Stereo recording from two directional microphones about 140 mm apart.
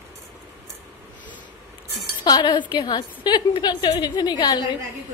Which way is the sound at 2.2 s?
30° left (ahead or behind).